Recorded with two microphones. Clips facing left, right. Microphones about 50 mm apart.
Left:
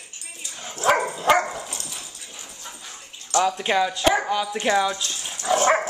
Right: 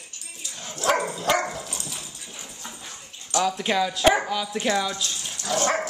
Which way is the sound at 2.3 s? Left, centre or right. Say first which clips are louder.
Right 1 dB; centre.